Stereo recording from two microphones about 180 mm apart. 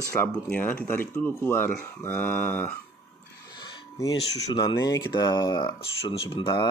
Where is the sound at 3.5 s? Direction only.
20° left (ahead or behind).